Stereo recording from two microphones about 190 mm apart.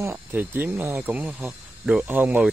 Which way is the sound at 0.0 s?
10° right (ahead or behind).